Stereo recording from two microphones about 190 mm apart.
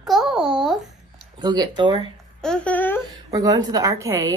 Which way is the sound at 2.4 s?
5° left (ahead or behind).